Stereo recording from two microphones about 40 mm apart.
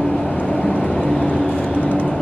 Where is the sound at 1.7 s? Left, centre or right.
Left.